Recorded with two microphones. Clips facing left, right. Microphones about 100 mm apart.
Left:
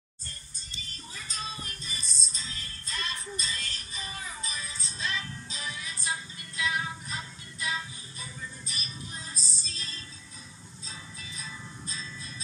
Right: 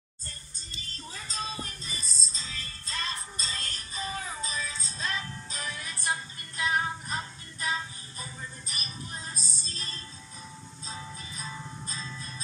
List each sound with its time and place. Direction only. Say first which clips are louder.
1.3 s music: right 3 dB; 40° right (ahead or behind)